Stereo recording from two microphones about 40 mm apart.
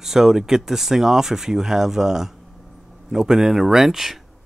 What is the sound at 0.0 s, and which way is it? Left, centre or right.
Speech, centre.